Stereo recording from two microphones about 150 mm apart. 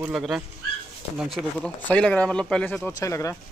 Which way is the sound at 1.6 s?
5° left (ahead or behind).